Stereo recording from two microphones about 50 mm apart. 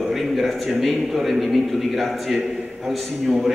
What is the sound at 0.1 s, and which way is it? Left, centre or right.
A man's voice, centre.